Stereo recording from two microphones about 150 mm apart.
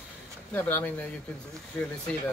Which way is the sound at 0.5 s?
10° left (ahead or behind).